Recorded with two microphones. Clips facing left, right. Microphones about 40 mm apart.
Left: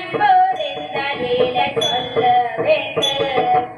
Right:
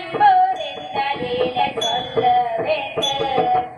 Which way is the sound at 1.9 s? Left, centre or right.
Left.